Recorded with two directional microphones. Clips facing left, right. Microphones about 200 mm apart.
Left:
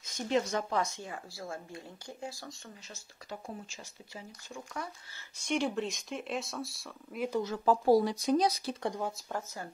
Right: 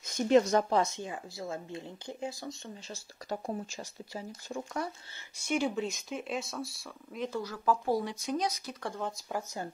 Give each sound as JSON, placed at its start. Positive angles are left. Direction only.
{"t": 0.3, "sound": "speech", "side_deg": -40}
{"t": 0.7, "sound": "a woman's voice", "side_deg": -20}
{"t": 2.9, "sound": "speech", "side_deg": -40}
{"t": 5.4, "sound": "speech", "side_deg": -5}
{"t": 7.2, "sound": "speech", "side_deg": 20}
{"t": 8.8, "sound": "speech", "side_deg": 15}
{"t": 9.3, "sound": "speech", "side_deg": -15}